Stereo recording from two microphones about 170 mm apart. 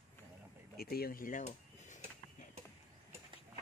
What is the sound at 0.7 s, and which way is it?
Speech, 60° left (ahead or behind).